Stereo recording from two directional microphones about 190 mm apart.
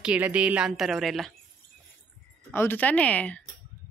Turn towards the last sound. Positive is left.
turn(degrees=5)  # may be behind; listen again after turning